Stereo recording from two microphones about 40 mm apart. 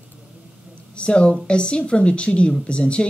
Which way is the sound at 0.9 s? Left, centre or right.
Left.